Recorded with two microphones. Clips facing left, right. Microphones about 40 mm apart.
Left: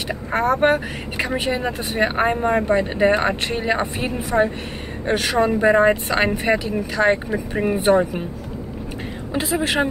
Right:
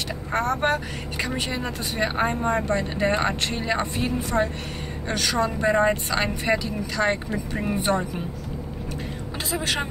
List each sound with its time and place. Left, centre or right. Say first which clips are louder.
0.1 s speech: left 6 dB; centre
9.3 s speech: left 6 dB; centre